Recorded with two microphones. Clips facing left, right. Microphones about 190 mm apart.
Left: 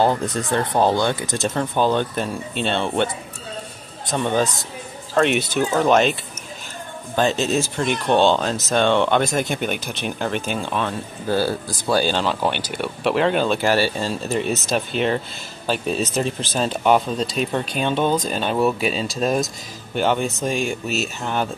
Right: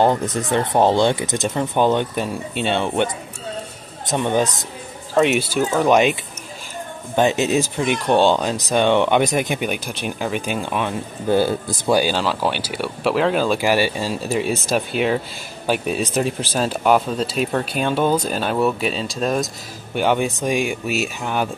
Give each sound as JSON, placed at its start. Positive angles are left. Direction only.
{"t": 0.0, "sound": "speech", "side_deg": -20}
{"t": 4.1, "sound": "speech", "side_deg": -15}
{"t": 5.1, "sound": "speech", "side_deg": -5}
{"t": 5.9, "sound": "speech", "side_deg": -15}
{"t": 7.2, "sound": "speech", "side_deg": -15}
{"t": 20.0, "sound": "speech", "side_deg": -10}